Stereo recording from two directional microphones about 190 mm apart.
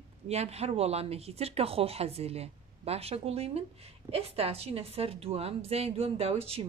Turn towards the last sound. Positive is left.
turn(degrees=-30)  # may be behind; listen again after turning